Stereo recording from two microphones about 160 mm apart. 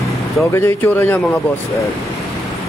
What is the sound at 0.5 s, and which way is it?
Speech, 10° left (ahead or behind).